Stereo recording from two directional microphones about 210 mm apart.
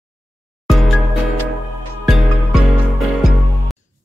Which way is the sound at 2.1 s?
Centre (ahead or behind).